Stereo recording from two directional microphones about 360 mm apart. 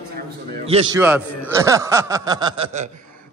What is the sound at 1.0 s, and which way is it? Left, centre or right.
A man's voice, centre.